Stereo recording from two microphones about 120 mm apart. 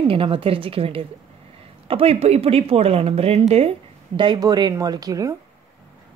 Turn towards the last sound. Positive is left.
turn(degrees=-30)  # may be behind; listen again after turning